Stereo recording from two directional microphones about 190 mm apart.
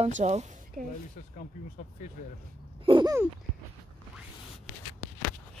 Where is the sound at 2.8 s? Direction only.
25° right (ahead or behind).